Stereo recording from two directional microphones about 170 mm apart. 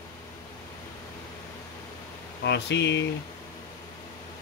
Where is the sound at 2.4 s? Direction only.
90° left.